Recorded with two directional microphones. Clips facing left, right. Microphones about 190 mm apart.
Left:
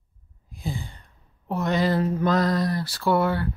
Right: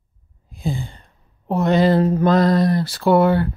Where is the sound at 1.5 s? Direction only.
25° right (ahead or behind).